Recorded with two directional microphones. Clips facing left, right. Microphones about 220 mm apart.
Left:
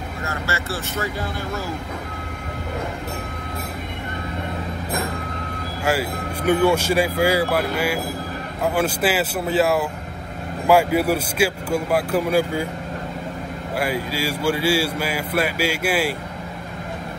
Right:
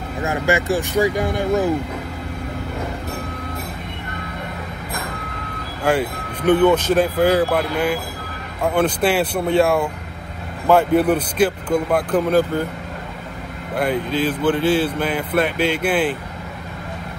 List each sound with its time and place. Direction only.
0.2 s speech: 15° right (ahead or behind)
5.9 s speech: 10° left (ahead or behind)
13.7 s speech: 5° left (ahead or behind)